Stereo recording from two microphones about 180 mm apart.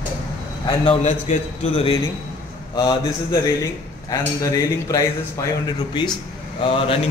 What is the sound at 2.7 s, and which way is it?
A man's voice, 25° left (ahead or behind).